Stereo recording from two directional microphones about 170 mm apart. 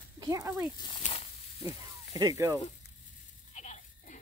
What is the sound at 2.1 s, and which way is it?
Speech, 20° right (ahead or behind).